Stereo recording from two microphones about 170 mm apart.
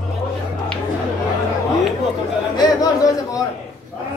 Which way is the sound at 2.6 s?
20° left (ahead or behind).